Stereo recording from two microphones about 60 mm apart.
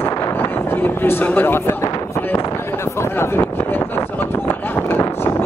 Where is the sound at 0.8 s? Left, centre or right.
Left.